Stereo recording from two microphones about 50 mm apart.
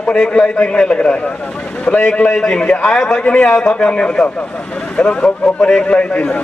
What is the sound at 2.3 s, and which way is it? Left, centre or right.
Speech, centre.